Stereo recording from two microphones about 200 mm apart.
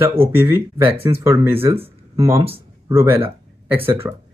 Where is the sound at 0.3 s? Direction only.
10° right (ahead or behind).